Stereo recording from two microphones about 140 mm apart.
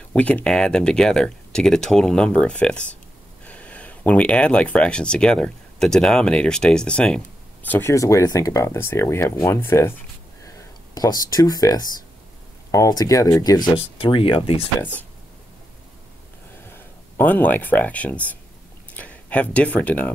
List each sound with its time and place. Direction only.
0.1 s speech: 10° left (ahead or behind)
11.0 s speech: 25° left (ahead or behind)
13.7 s speech: 40° left (ahead or behind)
14.8 s speech: 15° left (ahead or behind)
16.7 s speech: 10° left (ahead or behind)